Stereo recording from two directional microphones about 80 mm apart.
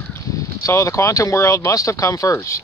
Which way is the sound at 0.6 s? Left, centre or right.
Left.